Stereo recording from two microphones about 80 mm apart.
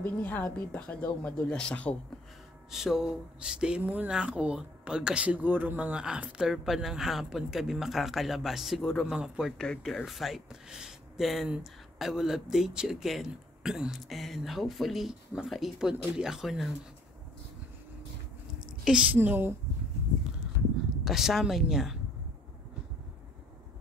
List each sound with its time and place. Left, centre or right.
0.0 s a woman's voice: left
2.7 s speech: centre
9.6 s speech: centre
18.9 s speech: centre
19.1 s a woman's voice: right
21.0 s speech: centre